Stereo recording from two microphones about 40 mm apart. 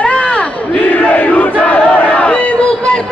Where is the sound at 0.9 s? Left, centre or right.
Left.